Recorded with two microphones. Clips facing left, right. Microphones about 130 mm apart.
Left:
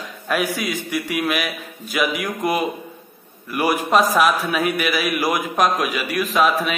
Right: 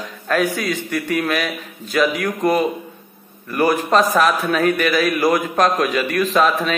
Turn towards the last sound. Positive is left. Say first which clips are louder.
# right 2 dB
turn(degrees=5)  # may be behind; listen again after turning